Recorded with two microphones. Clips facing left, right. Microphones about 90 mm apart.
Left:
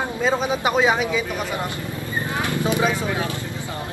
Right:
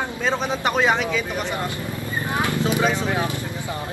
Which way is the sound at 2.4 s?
20° left (ahead or behind).